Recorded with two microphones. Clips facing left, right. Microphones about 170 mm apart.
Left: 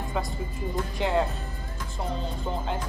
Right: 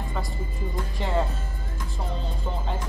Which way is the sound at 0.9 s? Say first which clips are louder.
Left 2 dB; centre (ahead or behind).